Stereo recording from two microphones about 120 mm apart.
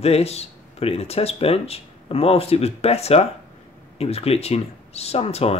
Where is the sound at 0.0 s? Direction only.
60° left (ahead or behind).